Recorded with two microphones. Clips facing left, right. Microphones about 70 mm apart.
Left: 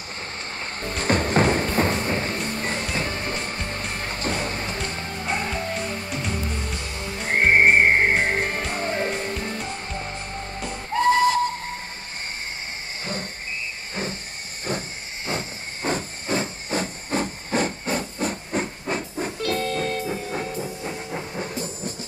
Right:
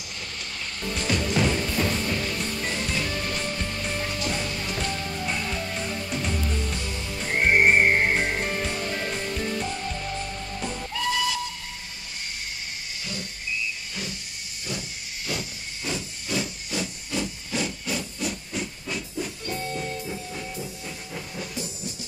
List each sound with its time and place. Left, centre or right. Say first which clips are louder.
0.6 s music: left 1 dB; left
7.0 s music: left 4 dB; left
10.9 s hiss: left 10 dB; left
13.0 s steam: left 4 dB; left
15.2 s hiss: left 4 dB; left
19.4 s music: left 10 dB; left
20.1 s train: left 6 dB; left